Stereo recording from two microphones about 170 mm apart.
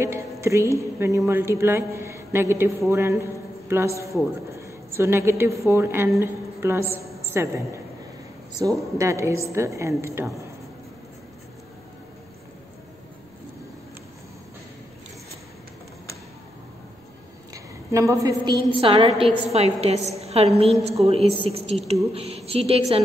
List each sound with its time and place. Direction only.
0.0 s a man's voice: 15° right (ahead or behind)
17.9 s a woman's voice: 20° right (ahead or behind)
18.8 s a woman's voice: 35° right (ahead or behind)